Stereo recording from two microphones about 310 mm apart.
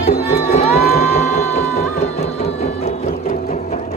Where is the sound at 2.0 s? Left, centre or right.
Centre.